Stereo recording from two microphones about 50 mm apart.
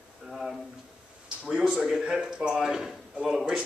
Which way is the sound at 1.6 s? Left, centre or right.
Centre.